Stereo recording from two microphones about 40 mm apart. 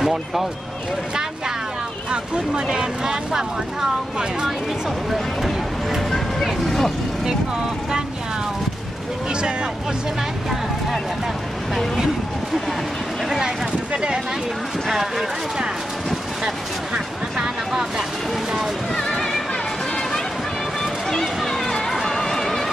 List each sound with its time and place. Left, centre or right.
0.0 s speech: centre
2.0 s speech: right
5.9 s music: centre
14.9 s speech: centre
16.4 s speech: centre
18.9 s a sound: centre
20.8 s music: centre
21.5 s run: centre
22.0 s music: centre